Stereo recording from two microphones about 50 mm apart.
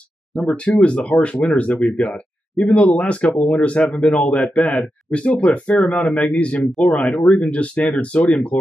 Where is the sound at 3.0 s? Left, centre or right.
Left.